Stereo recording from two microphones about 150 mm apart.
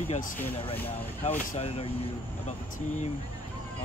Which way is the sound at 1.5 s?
40° left (ahead or behind).